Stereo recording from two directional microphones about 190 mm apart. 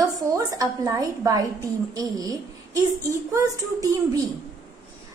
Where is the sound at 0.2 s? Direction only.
20° right (ahead or behind).